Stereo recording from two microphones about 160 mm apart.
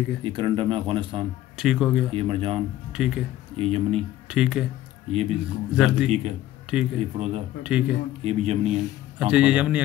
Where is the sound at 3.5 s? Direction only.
40° right (ahead or behind).